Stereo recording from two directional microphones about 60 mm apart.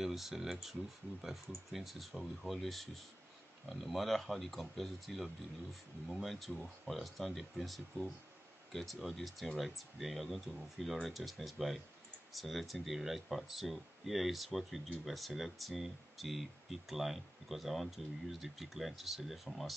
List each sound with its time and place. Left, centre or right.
0.0 s speech: centre